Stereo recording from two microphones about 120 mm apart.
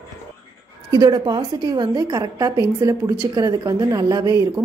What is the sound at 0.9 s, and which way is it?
A woman's voice, 35° right (ahead or behind).